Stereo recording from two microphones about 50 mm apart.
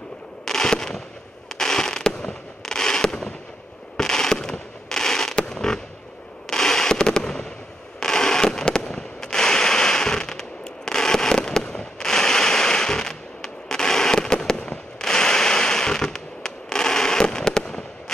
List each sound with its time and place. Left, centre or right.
0.5 s fireworks: centre